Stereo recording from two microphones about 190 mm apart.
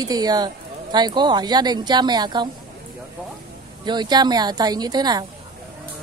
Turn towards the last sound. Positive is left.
turn(degrees=-20)  # may be behind; listen again after turning